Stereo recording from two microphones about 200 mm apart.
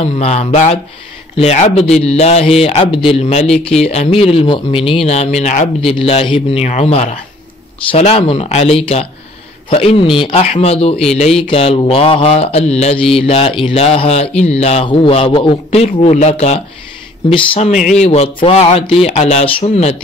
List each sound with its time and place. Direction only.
0.0 s mantra: 30° left (ahead or behind)
9.7 s a man's voice: 25° left (ahead or behind)
11.1 s mantra: 30° left (ahead or behind)